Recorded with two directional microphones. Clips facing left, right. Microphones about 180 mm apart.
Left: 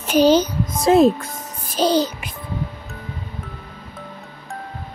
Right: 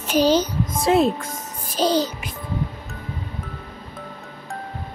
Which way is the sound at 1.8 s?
65° left (ahead or behind).